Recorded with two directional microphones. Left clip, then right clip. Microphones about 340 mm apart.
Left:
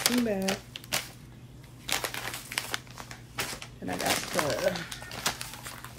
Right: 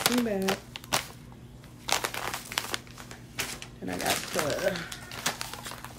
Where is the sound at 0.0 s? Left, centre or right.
Centre.